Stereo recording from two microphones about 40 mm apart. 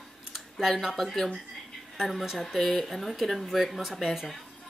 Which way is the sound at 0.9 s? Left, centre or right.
Centre.